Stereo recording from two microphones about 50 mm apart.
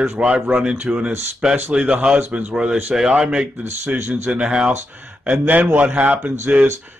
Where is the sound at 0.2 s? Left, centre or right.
Right.